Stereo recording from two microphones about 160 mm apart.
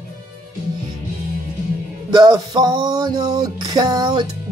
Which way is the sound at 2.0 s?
25° right (ahead or behind).